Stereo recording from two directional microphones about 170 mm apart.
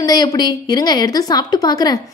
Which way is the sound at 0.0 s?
25° left (ahead or behind).